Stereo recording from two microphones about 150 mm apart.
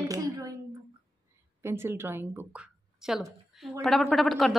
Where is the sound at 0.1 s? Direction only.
20° right (ahead or behind).